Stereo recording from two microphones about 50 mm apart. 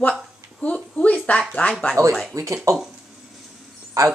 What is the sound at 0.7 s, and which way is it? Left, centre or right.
A woman's voice, left.